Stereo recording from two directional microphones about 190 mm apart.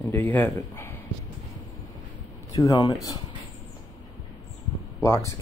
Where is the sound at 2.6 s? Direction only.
20° left (ahead or behind).